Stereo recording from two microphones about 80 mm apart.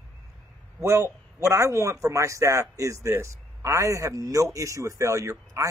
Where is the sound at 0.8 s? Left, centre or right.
Right.